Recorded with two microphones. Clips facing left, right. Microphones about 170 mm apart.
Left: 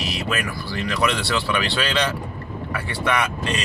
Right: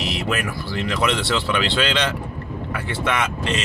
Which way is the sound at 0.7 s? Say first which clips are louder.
Right 1 dB; 20° right (ahead or behind).